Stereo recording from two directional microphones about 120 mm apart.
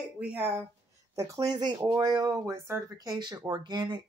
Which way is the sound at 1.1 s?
30° right (ahead or behind).